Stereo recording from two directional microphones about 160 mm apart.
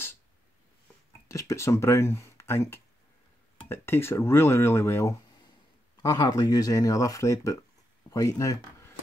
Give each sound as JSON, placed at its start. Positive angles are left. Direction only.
{"t": 1.3, "sound": "speech", "side_deg": 20}